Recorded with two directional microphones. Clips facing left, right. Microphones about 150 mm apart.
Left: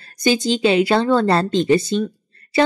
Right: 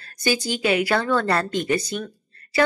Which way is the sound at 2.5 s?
25° left (ahead or behind).